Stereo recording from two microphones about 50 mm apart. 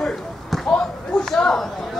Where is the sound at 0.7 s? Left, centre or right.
Centre.